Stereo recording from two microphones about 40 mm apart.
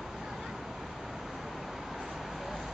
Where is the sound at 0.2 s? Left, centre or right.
Centre.